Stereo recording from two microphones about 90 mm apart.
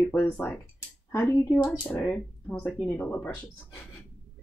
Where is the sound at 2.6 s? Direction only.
15° left (ahead or behind).